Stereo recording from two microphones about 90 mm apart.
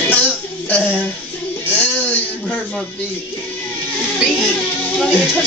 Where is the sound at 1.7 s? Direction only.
15° left (ahead or behind).